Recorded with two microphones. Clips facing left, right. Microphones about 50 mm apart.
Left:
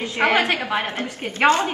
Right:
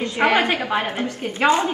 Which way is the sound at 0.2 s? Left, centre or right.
Centre.